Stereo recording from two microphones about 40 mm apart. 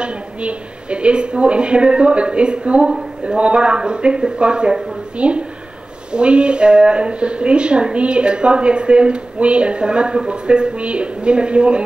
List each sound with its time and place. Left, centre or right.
0.0 s a woman's voice: right